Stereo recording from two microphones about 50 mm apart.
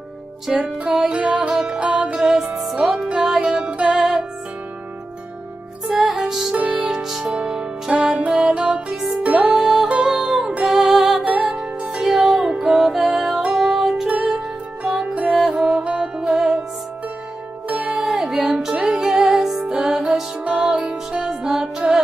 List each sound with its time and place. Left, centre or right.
0.5 s music: centre
2.1 s music: centre
5.9 s music: centre
6.5 s music: right
6.9 s music: centre
11.2 s music: centre
17.6 s music: right
18.1 s music: centre